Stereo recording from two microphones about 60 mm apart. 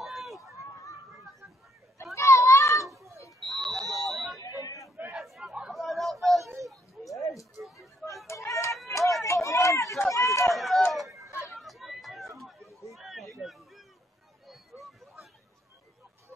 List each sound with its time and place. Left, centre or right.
0.0 s run: centre
2.1 s children playing: left
3.4 s smoke detector: centre
4.6 s crowd: left
5.1 s chatter: centre
5.4 s chatter: centre
5.7 s a sound: centre
7.6 s a sound: centre
8.3 s a sound: left
9.2 s run: left
10.5 s run: centre
10.9 s chatter: centre
11.1 s chatter: right
11.5 s a sound: centre